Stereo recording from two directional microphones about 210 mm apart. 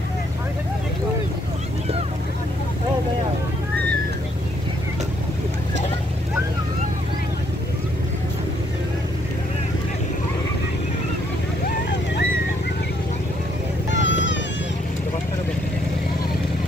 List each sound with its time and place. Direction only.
13.9 s vehicle: 60° left (ahead or behind)